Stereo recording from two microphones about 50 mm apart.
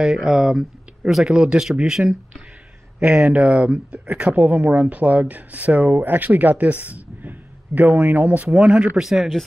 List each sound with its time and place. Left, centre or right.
0.0 s speech: centre; by 6.9 s right
7.2 s a sound: right
8.5 s speech: centre
9.0 s speech: centre